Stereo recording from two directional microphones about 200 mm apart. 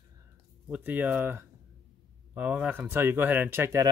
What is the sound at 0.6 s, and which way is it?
Speech, 5° right (ahead or behind).